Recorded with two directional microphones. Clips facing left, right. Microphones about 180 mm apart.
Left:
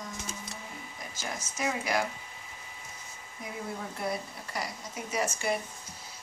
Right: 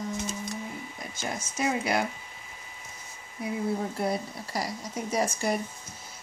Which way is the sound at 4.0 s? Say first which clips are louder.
Right 5 dB; 35° right (ahead or behind).